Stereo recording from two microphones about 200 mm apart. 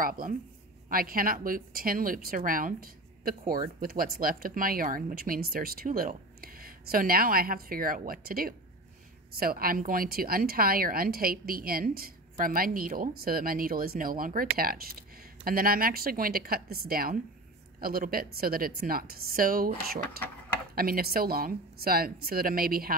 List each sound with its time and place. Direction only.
0.0 s a woman's voice: 45° right (ahead or behind)